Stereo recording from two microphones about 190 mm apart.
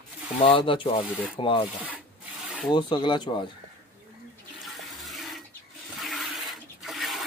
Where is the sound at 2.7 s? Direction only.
25° left (ahead or behind).